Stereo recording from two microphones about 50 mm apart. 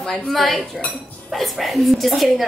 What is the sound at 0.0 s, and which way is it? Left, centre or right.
A woman's voice, centre.